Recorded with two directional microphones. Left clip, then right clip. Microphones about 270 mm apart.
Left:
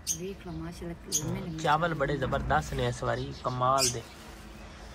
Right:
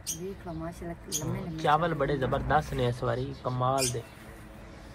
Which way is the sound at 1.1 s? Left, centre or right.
Centre.